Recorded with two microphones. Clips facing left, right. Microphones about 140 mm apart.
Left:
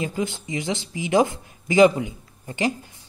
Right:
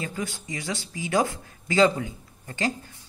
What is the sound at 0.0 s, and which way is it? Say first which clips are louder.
Speech: left 6 dB; 20° left (ahead or behind).